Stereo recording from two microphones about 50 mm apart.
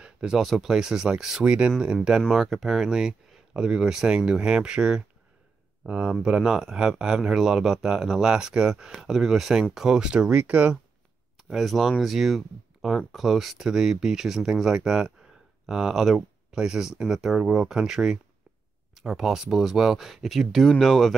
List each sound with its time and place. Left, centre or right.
0.0 s a sound: centre
0.4 s speech: centre; by 1.7 s right
2.3 s speech: centre; by 10.8 s right
11.5 s speech: centre